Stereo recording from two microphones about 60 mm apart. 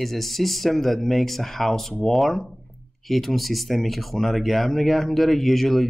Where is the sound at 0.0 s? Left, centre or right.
Centre.